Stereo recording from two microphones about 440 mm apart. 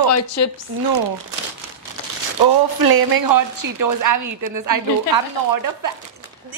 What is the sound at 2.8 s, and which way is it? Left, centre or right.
A woman's voice, right.